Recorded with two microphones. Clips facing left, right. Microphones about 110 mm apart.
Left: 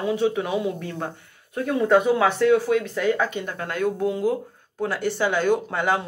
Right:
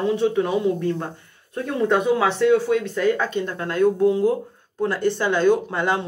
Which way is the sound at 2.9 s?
5° left (ahead or behind).